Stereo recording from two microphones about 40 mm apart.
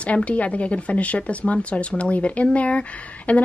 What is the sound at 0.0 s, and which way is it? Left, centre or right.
A woman's voice, left.